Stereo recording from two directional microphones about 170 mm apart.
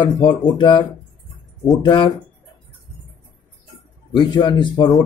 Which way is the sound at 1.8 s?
30° left (ahead or behind).